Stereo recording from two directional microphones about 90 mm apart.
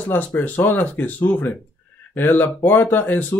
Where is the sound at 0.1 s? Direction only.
20° left (ahead or behind).